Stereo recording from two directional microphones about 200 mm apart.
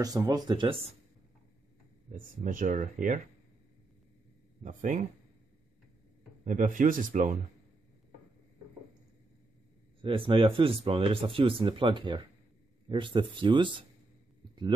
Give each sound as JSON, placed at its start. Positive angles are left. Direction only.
{"t": 0.0, "sound": "speech", "side_deg": -20}
{"t": 2.1, "sound": "speech", "side_deg": -40}
{"t": 4.6, "sound": "speech", "side_deg": -40}
{"t": 6.4, "sound": "speech", "side_deg": -40}
{"t": 10.0, "sound": "speech", "side_deg": -25}